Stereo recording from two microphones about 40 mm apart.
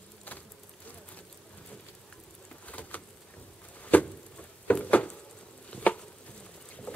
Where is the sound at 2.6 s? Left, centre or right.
Left.